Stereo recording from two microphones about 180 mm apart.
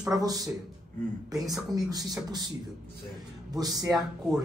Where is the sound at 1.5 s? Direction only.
20° right (ahead or behind).